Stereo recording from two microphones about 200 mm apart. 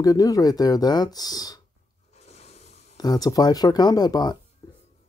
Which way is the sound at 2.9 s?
20° left (ahead or behind).